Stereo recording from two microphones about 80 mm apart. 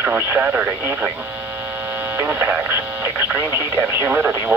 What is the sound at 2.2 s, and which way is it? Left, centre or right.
Speech, right.